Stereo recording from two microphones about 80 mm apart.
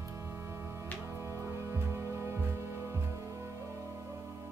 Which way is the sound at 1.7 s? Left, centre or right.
Right.